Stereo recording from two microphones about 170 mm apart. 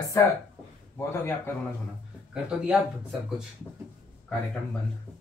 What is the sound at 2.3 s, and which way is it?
Speech, 5° right (ahead or behind).